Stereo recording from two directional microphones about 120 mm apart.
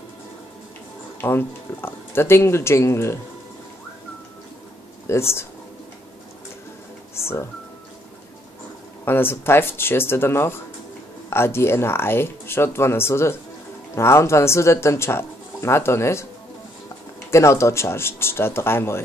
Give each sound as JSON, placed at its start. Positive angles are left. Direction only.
{"t": 1.2, "sound": "speech", "side_deg": 20}
{"t": 5.1, "sound": "speech", "side_deg": 25}
{"t": 7.2, "sound": "music", "side_deg": 20}
{"t": 9.0, "sound": "speech", "side_deg": 20}
{"t": 17.3, "sound": "speech", "side_deg": 25}